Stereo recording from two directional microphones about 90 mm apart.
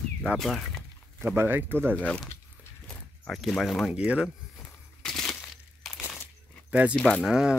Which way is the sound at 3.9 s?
10° right (ahead or behind).